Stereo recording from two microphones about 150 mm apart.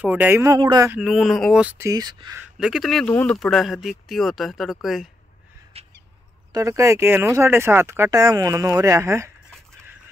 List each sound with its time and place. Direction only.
0.0 s speech: 10° right (ahead or behind)
0.6 s speech: 30° right (ahead or behind)
0.8 s speech: 5° right (ahead or behind)
1.9 s speech: 25° right (ahead or behind)
2.6 s speech: centre (ahead or behind)
5.7 s a sound: 40° right (ahead or behind)
6.5 s speech: 20° right (ahead or behind)